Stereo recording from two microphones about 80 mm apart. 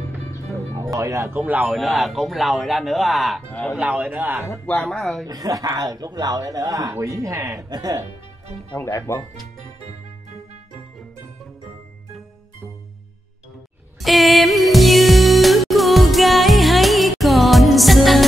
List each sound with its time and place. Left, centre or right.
0.7 s speech: right
1.4 s a man's voice: centre
1.7 s speech: centre
3.4 s speech: centre
3.7 s a man's voice: centre
4.8 s speech: centre
5.2 s speech: right
8.8 s speech: left
14.0 s music: centre